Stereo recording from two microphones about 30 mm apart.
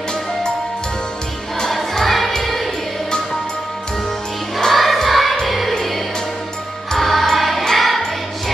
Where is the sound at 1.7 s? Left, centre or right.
Centre.